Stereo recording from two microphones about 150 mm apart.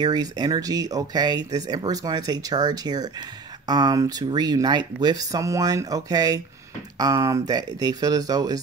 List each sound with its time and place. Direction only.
0.0 s speech: 25° right (ahead or behind)